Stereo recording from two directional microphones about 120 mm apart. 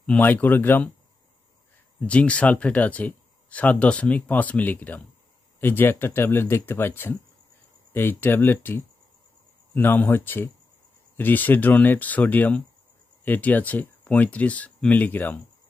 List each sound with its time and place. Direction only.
0.0 s speech: 10° left (ahead or behind)
2.0 s speech: 10° left (ahead or behind)